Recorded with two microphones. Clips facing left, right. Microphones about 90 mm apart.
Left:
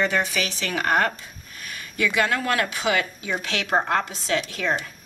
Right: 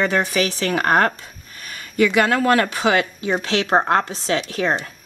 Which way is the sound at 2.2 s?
40° right (ahead or behind).